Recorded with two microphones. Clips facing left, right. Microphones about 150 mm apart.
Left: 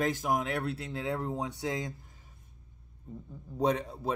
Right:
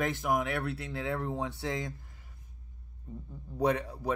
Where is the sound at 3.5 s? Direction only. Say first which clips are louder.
Even; 25° left (ahead or behind).